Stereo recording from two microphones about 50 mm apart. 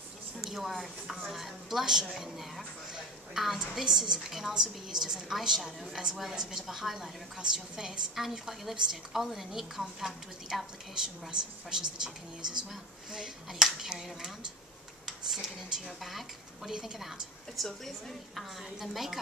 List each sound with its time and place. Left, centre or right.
0.4 s a woman's voice: centre
17.6 s a woman's voice: centre